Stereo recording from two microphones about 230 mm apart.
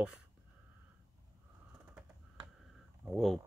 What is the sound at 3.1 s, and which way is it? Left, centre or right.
Speech, centre.